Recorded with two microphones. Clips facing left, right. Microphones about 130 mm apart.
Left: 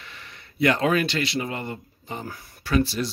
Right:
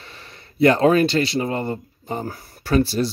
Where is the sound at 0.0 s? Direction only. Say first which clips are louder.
Right 2 dB; 35° right (ahead or behind).